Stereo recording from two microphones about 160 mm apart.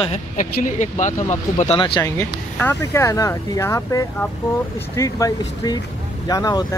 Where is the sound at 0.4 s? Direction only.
50° left (ahead or behind).